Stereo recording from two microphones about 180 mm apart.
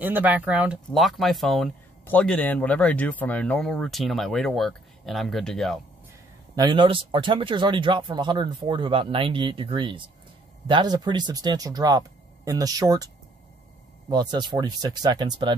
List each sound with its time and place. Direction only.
0.0 s speech: 10° right (ahead or behind)
6.5 s speech: 25° right (ahead or behind)